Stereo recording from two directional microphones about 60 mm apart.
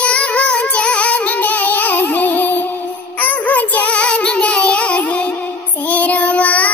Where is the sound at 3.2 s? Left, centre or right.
Left.